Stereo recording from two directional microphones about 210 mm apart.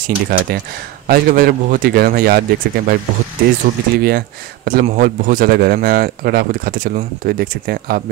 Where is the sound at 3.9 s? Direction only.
45° right (ahead or behind).